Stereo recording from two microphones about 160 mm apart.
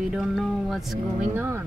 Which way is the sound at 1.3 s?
15° right (ahead or behind).